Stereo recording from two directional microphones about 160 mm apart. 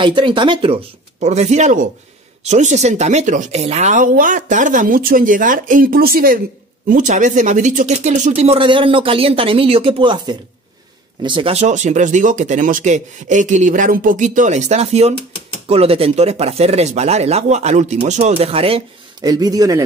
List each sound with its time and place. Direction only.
0.0 s speech: 30° right (ahead or behind)
1.2 s speech: 45° right (ahead or behind); by 6.4 s 65° right (ahead or behind)
6.9 s speech: 50° right (ahead or behind); by 18.8 s 35° right (ahead or behind)
19.2 s speech: 25° right (ahead or behind)